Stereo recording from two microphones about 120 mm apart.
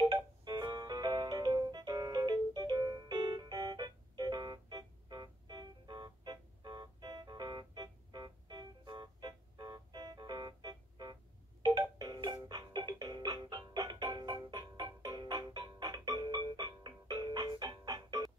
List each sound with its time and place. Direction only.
0.1 s music: 40° right (ahead or behind)